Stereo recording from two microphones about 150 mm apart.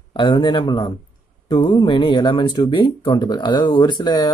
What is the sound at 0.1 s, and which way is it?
Speech, 30° left (ahead or behind).